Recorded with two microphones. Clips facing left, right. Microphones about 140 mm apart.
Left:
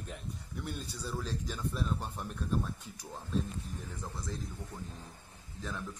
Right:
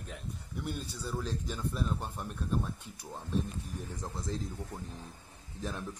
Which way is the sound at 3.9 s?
20° right (ahead or behind).